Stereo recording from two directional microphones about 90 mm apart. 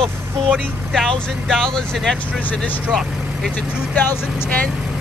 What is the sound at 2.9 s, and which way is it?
Speech, centre (ahead or behind).